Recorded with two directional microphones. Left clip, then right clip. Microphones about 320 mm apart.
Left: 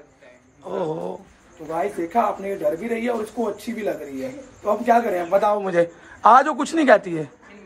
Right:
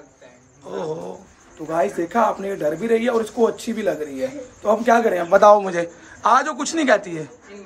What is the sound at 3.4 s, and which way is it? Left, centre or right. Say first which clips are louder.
Speech: right 9 dB; right.